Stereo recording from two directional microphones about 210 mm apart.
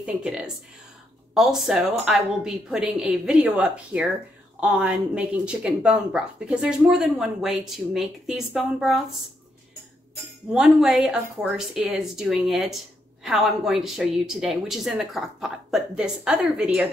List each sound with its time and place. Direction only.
0.0 s a woman's voice: 5° right (ahead or behind)
10.5 s a woman's voice: 5° right (ahead or behind)